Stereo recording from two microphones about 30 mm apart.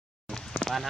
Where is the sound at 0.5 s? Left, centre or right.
Left.